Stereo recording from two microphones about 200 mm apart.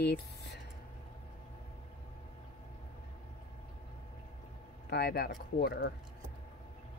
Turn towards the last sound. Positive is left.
turn(degrees=50)  # may be behind; listen again after turning